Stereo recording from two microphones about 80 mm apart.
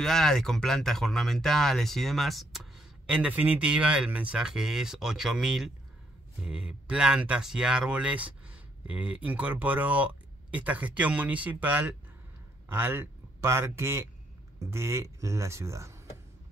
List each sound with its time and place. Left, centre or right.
0.0 s a man's voice: centre; by 16.0 s right